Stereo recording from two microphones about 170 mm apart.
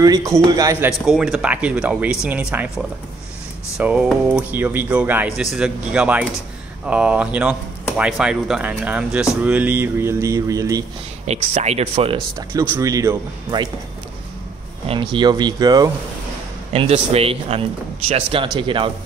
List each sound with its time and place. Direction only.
0.0 s speech: 20° right (ahead or behind)
1.0 s speech: centre (ahead or behind); by 10.9 s 20° right (ahead or behind)
11.2 s speech: 40° right (ahead or behind)
12.4 s speech: 20° right (ahead or behind)
14.9 s speech: 30° right (ahead or behind)
16.7 s speech: 35° right (ahead or behind)